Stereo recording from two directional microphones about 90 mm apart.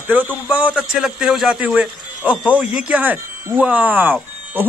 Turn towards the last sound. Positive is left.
turn(degrees=-20)  # may be behind; listen again after turning